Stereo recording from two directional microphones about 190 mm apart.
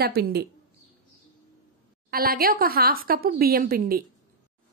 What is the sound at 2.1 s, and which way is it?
Speech, 50° right (ahead or behind).